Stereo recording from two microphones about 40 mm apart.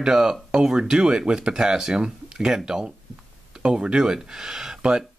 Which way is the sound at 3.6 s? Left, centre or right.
Right.